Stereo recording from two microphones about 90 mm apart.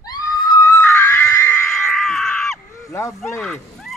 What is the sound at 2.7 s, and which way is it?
Honk, 35° left (ahead or behind).